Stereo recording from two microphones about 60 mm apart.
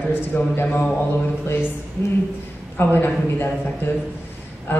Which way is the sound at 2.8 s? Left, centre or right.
Left.